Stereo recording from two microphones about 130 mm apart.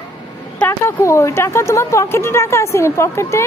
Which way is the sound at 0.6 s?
20° left (ahead or behind).